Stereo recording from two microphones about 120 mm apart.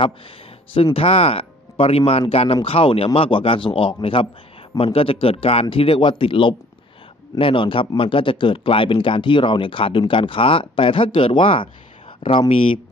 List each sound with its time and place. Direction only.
0.9 s speech: 55° left (ahead or behind)